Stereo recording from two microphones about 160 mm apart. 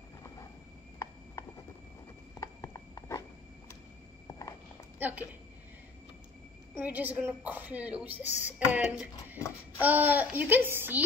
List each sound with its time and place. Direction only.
2.4 s horse: 20° left (ahead or behind)
4.9 s a sound: 10° right (ahead or behind)
6.8 s speech: 10° right (ahead or behind)